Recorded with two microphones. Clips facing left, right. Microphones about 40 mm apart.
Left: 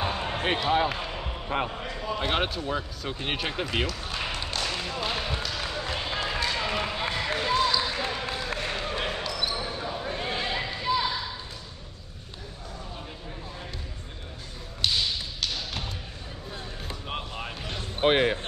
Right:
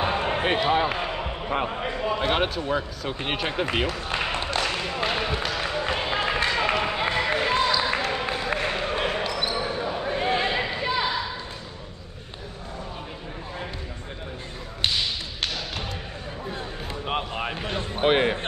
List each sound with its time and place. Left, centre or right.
0.0 s basketball bounce: right
0.5 s a man's voice: centre; by 2.1 s right
2.1 s speech: centre
4.1 s a sound: right
5.0 s a man's voice: right
5.4 s a sound: right
6.5 s basketball bounce: right
16.4 s a sound: right
17.9 s speech: centre